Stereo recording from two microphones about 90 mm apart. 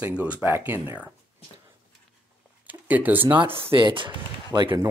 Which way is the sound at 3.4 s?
85° right.